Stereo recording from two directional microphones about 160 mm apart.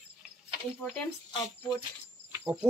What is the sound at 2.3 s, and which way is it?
Insect, 10° right (ahead or behind).